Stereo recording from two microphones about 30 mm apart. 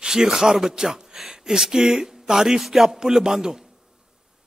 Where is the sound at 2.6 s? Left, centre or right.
Centre.